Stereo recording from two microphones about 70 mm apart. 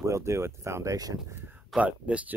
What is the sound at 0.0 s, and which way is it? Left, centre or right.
Speech, right.